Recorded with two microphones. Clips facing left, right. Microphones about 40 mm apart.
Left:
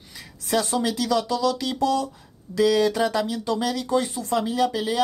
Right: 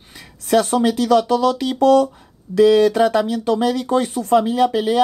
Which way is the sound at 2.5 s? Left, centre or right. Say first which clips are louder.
Right 7 dB; right.